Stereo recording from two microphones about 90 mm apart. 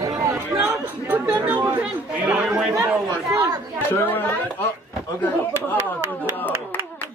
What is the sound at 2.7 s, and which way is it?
Chatter, 45° right (ahead or behind).